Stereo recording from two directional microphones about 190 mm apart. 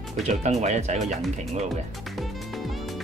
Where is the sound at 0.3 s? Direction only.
35° right (ahead or behind).